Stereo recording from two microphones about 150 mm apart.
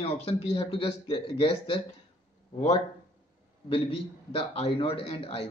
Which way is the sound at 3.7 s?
35° left (ahead or behind).